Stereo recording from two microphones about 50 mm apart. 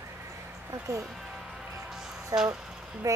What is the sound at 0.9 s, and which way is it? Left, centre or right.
Speech, right.